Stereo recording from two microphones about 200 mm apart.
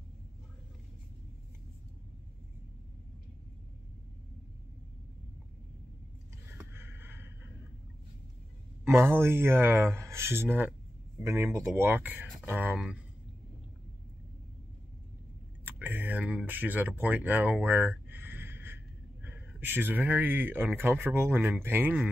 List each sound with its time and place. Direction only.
6.6 s a sound: 10° right (ahead or behind)
8.8 s speech: 10° right (ahead or behind)
15.6 s speech: 10° right (ahead or behind)